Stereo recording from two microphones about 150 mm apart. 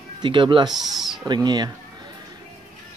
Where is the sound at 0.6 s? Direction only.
Centre (ahead or behind).